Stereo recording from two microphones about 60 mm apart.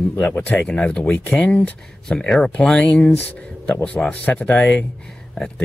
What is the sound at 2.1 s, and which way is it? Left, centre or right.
Speech, centre.